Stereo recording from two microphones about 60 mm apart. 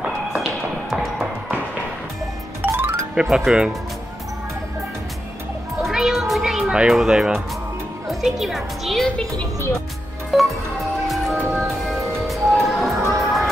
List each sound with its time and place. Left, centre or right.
0.4 s tap: centre
2.6 s music: right
3.2 s speech: centre
5.8 s a sound: centre
6.9 s a woman's voice: centre
10.3 s a woman's voice: centre
11.1 s music: centre